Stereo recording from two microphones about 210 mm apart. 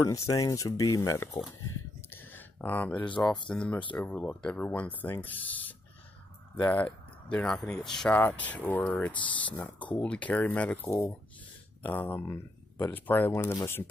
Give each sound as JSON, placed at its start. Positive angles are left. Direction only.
{"t": 0.3, "sound": "speech", "side_deg": 15}
{"t": 2.0, "sound": "a sound", "side_deg": 10}
{"t": 3.4, "sound": "speech", "side_deg": 5}